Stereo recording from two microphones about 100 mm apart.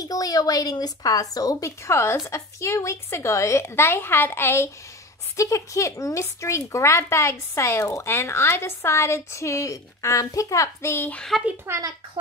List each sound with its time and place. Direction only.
0.0 s speech: 40° left (ahead or behind); by 11.2 s 20° left (ahead or behind)
11.6 s a woman's voice: 30° right (ahead or behind)